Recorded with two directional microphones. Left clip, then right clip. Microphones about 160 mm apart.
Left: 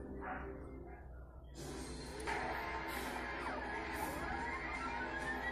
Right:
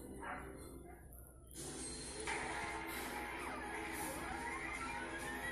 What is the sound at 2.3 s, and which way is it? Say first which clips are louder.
Music: left 2 dB; 35° left (ahead or behind).